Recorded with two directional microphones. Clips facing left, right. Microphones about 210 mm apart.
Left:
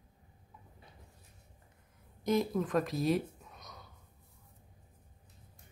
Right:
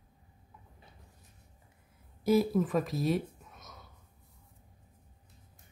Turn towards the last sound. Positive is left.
turn(degrees=0)  # may be behind; listen again after turning